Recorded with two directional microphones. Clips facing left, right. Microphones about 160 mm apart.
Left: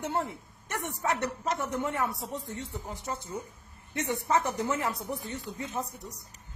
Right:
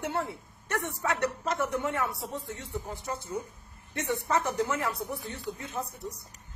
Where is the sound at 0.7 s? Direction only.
15° left (ahead or behind).